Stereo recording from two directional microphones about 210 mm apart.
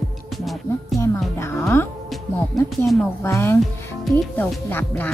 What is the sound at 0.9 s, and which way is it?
Speech, 15° left (ahead or behind).